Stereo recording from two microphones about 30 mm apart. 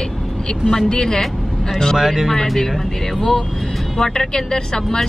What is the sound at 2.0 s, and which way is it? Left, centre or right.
Speech, centre.